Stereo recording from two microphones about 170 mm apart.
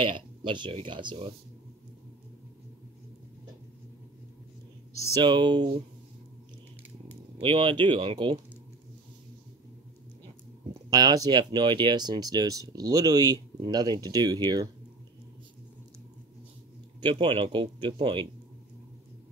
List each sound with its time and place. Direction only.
0.0 s speech: 30° right (ahead or behind)
5.2 s speech: 25° right (ahead or behind)
7.1 s speech: 30° right (ahead or behind)
10.7 s speech: 25° right (ahead or behind)
17.0 s speech: 30° right (ahead or behind)